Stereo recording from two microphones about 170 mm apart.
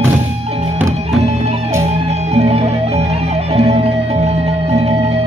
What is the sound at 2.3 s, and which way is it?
Music, 35° right (ahead or behind).